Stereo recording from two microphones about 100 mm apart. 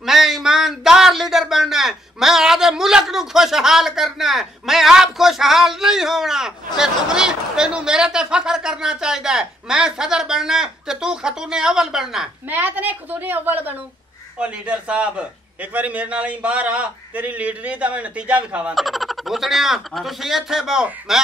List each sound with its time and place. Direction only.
0.0 s a sound: 5° right (ahead or behind)
12.4 s a man's voice: 20° right (ahead or behind)
18.8 s speech: centre (ahead or behind)